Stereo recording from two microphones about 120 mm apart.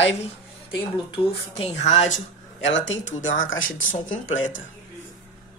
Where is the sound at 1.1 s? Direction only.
55° left (ahead or behind); by 2.2 s 75° left (ahead or behind).